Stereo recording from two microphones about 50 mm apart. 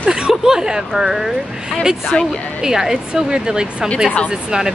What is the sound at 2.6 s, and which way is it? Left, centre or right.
Speech, centre.